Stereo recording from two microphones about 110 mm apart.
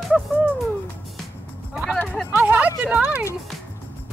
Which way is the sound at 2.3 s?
15° right (ahead or behind).